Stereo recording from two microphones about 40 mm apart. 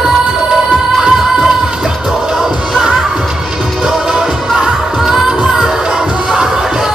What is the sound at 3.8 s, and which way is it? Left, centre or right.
Music, centre.